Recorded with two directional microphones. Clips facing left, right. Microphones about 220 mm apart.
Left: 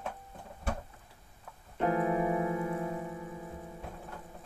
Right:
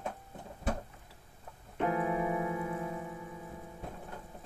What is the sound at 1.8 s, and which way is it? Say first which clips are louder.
Keyboard: left 3 dB; 40° left (ahead or behind).